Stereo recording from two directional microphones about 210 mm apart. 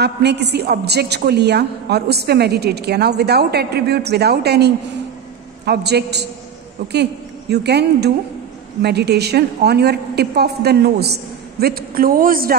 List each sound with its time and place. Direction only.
0.0 s a woman's voice: 50° right (ahead or behind)